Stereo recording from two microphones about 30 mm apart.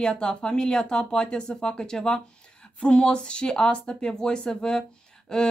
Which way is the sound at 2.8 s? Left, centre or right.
Left.